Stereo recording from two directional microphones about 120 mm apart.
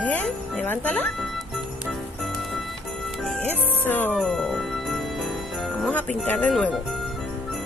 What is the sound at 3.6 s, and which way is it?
Music, 15° left (ahead or behind).